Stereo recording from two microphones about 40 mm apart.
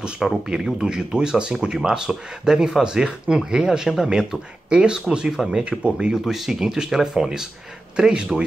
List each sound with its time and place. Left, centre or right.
0.0 s speech: centre
5.3 s speech: centre
5.6 s speech: right
6.2 s speech: centre